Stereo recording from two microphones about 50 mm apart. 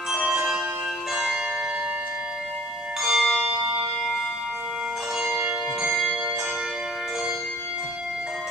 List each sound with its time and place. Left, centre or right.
0.1 s bell: centre
1.1 s music: centre
3.0 s music: centre
5.2 s church bell: right